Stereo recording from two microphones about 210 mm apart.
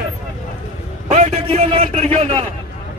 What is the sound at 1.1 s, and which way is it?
A man's voice, 30° right (ahead or behind).